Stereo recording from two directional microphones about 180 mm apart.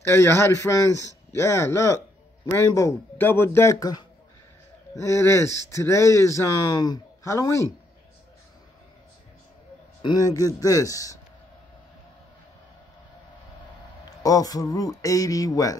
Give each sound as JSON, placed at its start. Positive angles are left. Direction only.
{"t": 0.0, "sound": "speech", "side_deg": 15}
{"t": 5.0, "sound": "speech", "side_deg": 15}
{"t": 10.0, "sound": "speech", "side_deg": 20}
{"t": 14.2, "sound": "speech", "side_deg": 20}